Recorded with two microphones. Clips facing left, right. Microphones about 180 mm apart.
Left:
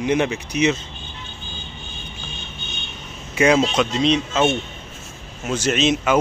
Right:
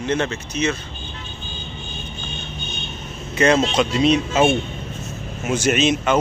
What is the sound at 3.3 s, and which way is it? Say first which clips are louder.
Speech: even; 5° left (ahead or behind).